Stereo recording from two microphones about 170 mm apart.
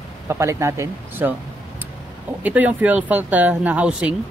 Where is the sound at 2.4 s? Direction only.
10° right (ahead or behind).